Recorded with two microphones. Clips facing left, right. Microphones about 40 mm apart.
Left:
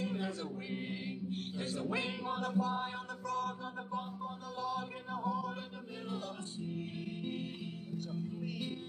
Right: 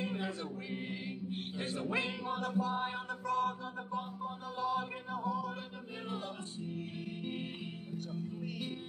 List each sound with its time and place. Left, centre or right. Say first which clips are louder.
0.0 s music: even; right
1.3 s a man's voice: right 1 dB; right
2.2 s chant: even; centre
3.7 s chant: right 1 dB; centre
5.1 s music: even; centre
6.0 s music: right 1 dB; right
7.9 s music: left 1 dB; centre